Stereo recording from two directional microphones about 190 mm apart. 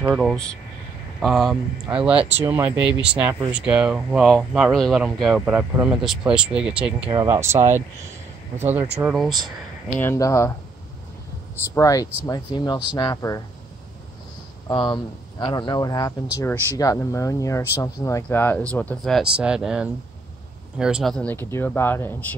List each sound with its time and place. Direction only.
0.1 s speech: centre (ahead or behind)
9.1 s speech: centre (ahead or behind)
9.9 s speech: 15° left (ahead or behind)
11.7 s speech: 15° left (ahead or behind)
14.7 s speech: 25° left (ahead or behind)